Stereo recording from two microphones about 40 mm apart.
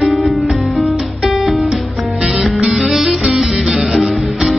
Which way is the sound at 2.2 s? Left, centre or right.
Centre.